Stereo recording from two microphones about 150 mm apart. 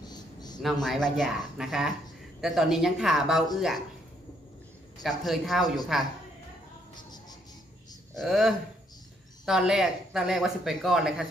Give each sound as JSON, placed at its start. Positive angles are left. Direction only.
{"t": 0.0, "sound": "a sound", "side_deg": 25}
{"t": 0.8, "sound": "speech", "side_deg": 0}
{"t": 5.0, "sound": "speech", "side_deg": 0}
{"t": 8.1, "sound": "speech", "side_deg": 0}